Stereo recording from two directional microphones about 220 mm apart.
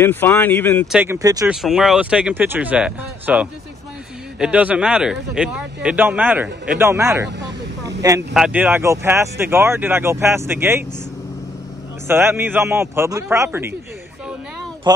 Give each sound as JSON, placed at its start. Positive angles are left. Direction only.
{"t": 0.0, "sound": "speech", "side_deg": 10}
{"t": 0.9, "sound": "speech", "side_deg": -10}
{"t": 1.5, "sound": "speech", "side_deg": 0}
{"t": 7.3, "sound": "speech", "side_deg": -50}
{"t": 8.3, "sound": "speech", "side_deg": -5}
{"t": 12.1, "sound": "speech", "side_deg": -10}
{"t": 14.8, "sound": "speech", "side_deg": -20}